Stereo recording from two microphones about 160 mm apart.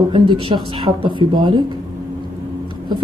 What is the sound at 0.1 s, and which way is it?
Speech, 30° right (ahead or behind).